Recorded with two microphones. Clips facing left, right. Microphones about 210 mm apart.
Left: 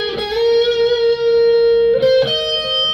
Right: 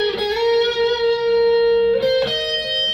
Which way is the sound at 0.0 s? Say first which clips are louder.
Left 2 dB; 45° left (ahead or behind).